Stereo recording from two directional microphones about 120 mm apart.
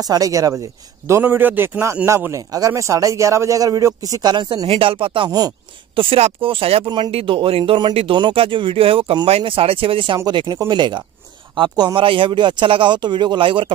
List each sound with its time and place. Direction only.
0.0 s a man's voice: 30° right (ahead or behind)
4.6 s speech: 50° right (ahead or behind)
6.8 s speech: 35° right (ahead or behind)
7.1 s speech: 50° right (ahead or behind)